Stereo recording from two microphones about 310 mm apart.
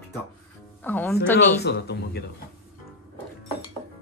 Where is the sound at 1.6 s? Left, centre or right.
Left.